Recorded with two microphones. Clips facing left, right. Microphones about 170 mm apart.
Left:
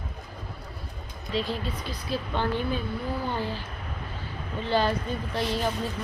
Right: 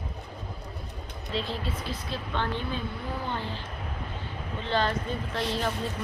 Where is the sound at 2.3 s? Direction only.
10° left (ahead or behind).